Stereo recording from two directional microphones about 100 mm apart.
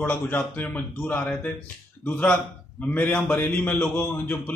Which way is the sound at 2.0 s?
15° left (ahead or behind).